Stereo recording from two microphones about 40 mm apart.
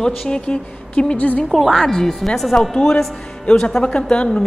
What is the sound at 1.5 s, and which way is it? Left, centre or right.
A woman's voice, centre.